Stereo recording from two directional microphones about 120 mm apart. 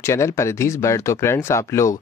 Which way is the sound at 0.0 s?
25° left (ahead or behind).